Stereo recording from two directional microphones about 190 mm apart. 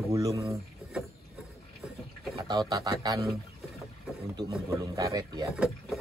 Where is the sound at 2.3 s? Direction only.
25° right (ahead or behind).